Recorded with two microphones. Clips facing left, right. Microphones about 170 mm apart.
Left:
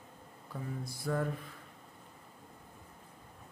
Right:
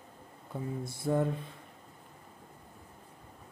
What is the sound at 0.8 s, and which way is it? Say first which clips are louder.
Speech: right 5 dB; 25° right (ahead or behind).